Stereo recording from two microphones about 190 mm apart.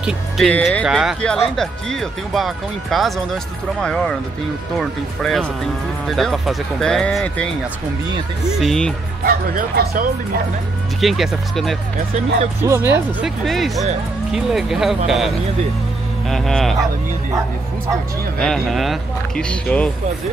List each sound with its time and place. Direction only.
0.0 s speech: 5° left (ahead or behind)
0.8 s speech: 5° right (ahead or behind)
9.2 s speech: 50° right (ahead or behind)
11.0 s speech: centre (ahead or behind)
12.6 s speech: 15° right (ahead or behind)
13.2 s speech: centre (ahead or behind)
18.4 s speech: centre (ahead or behind)